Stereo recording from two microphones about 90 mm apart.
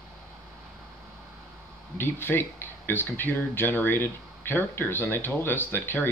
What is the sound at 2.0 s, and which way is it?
Speech, 25° left (ahead or behind).